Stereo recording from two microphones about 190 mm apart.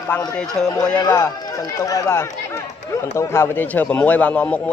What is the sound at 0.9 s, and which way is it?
A man's voice, 15° left (ahead or behind).